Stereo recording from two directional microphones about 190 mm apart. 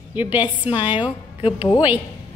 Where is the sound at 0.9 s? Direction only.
25° left (ahead or behind).